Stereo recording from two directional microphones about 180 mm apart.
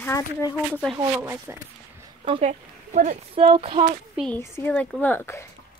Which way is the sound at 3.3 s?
30° right (ahead or behind).